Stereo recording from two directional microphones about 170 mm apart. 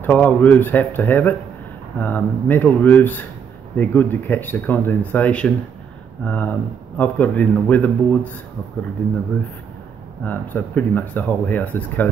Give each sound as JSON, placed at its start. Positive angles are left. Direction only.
{"t": 0.0, "sound": "speech", "side_deg": 10}
{"t": 10.2, "sound": "speech", "side_deg": 10}